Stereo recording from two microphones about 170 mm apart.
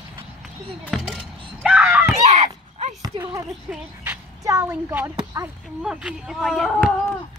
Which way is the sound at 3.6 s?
10° right (ahead or behind).